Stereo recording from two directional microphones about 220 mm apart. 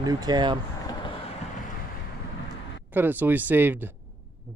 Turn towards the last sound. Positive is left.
turn(degrees=-10)  # may be behind; listen again after turning